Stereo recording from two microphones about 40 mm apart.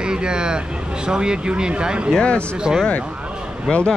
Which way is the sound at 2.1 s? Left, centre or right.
Left.